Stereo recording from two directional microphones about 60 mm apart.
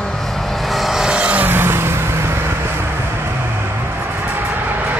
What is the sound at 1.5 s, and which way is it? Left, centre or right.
Vehicle, right.